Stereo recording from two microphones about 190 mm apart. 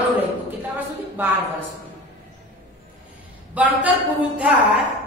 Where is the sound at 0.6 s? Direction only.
10° right (ahead or behind).